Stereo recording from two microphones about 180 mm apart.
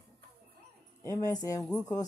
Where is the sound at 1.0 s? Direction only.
20° left (ahead or behind).